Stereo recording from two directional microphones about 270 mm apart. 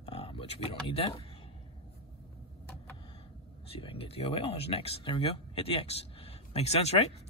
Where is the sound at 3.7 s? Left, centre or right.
Left.